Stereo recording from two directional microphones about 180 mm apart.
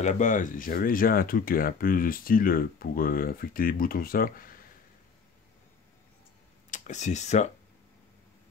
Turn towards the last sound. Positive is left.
turn(degrees=40)  # may be behind; listen again after turning